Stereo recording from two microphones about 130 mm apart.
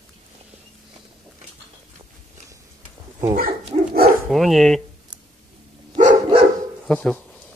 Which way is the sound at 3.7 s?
55° right (ahead or behind).